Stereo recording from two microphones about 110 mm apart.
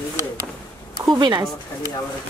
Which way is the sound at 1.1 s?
40° right (ahead or behind).